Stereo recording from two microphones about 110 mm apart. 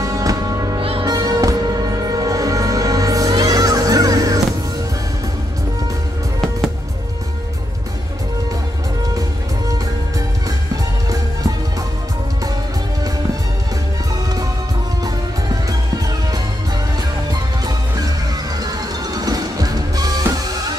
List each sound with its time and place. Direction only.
0.0 s music: 30° right (ahead or behind)
0.7 s music: 55° right (ahead or behind)
1.0 s music: 35° right (ahead or behind)
17.3 s music: 35° right (ahead or behind)